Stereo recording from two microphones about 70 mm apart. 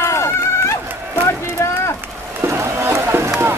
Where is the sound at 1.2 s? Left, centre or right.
Left.